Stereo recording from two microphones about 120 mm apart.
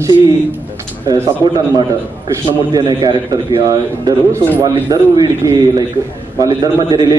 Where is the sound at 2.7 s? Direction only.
35° right (ahead or behind).